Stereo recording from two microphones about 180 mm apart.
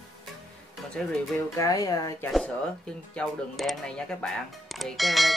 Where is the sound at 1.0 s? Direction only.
15° left (ahead or behind).